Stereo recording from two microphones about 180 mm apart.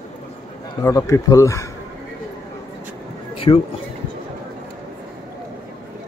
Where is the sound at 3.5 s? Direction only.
25° left (ahead or behind).